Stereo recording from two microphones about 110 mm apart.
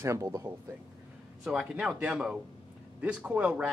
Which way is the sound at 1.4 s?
5° right (ahead or behind).